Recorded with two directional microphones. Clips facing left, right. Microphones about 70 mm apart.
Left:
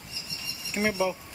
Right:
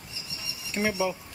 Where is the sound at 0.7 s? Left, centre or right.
Centre.